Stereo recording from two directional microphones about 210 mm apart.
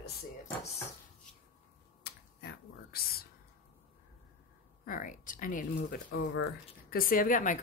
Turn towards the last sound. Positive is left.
turn(degrees=40)  # may be behind; listen again after turning